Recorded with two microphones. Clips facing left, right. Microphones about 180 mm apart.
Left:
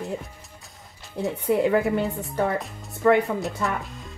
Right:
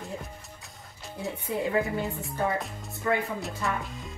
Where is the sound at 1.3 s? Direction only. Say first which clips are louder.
Left 7 dB; 75° left (ahead or behind).